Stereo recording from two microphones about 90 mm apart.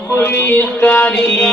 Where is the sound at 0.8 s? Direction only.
15° left (ahead or behind).